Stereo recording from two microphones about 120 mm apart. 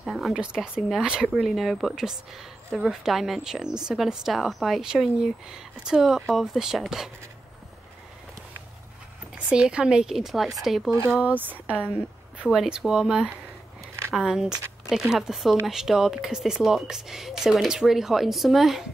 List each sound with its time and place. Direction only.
0.0 s speech: centre (ahead or behind)
9.5 s speech: 10° right (ahead or behind)
10.9 s speech: 25° right (ahead or behind); by 18.9 s centre (ahead or behind)